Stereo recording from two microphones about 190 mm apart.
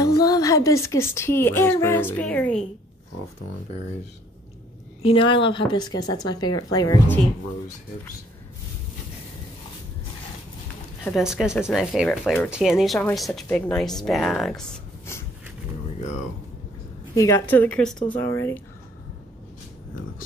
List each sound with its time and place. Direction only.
0.0 s speech: 20° left (ahead or behind)
5.0 s a woman's voice: 25° left (ahead or behind)
11.1 s speech: 5° right (ahead or behind)
17.1 s a woman's voice: 15° left (ahead or behind)